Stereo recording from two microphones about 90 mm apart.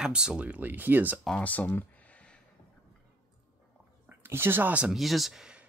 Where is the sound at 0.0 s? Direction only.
10° right (ahead or behind).